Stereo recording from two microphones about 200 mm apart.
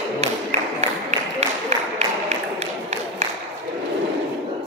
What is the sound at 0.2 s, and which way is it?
Music, 35° right (ahead or behind).